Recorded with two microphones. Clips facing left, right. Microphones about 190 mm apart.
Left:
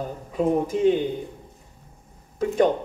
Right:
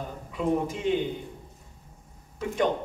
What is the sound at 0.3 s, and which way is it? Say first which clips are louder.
Speech: left 5 dB; 40° left (ahead or behind).